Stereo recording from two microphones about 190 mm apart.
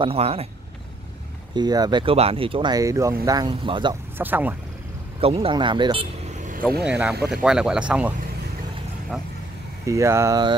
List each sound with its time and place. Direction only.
0.0 s speech: 30° right (ahead or behind)
1.5 s speech: 20° right (ahead or behind)
4.2 s speech: 10° right (ahead or behind)
5.2 s speech: 30° right (ahead or behind)
6.8 s speech: 5° right (ahead or behind)
9.8 s speech: 15° right (ahead or behind)